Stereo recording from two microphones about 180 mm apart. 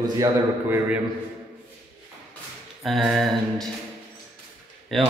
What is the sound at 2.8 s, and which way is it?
Speech, centre (ahead or behind).